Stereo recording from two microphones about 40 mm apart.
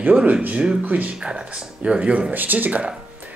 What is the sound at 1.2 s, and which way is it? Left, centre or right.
Speech, centre.